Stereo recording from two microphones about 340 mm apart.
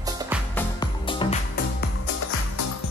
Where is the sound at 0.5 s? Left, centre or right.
Centre.